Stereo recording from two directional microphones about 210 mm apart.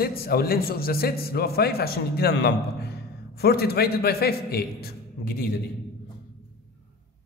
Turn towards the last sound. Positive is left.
turn(degrees=45)  # may be behind; listen again after turning